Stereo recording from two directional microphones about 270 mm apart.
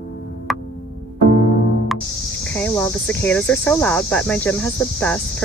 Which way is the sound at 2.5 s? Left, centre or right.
Centre.